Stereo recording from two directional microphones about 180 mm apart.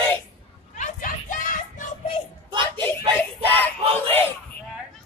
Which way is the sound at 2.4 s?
25° right (ahead or behind).